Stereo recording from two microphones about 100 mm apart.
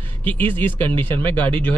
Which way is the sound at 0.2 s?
20° left (ahead or behind).